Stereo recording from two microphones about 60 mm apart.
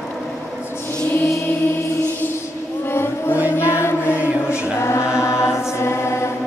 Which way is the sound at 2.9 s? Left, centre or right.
Left.